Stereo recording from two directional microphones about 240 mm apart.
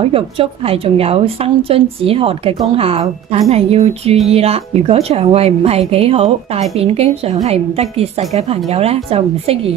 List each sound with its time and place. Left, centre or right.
0.0 s a woman's voice: right